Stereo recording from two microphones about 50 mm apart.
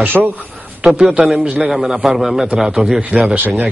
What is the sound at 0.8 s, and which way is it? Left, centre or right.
Speech, right.